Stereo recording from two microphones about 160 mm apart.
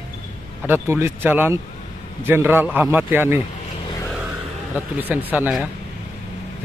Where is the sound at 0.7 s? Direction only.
15° right (ahead or behind).